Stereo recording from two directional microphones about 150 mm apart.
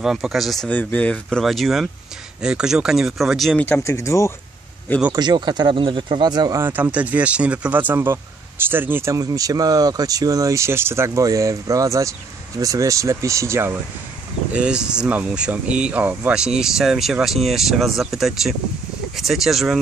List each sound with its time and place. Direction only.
0.0 s speech: 5° right (ahead or behind); by 4.3 s 20° left (ahead or behind)
5.1 s speech: 30° right (ahead or behind)
6.6 s speech: 10° right (ahead or behind)
14.5 s speech: 5° right (ahead or behind)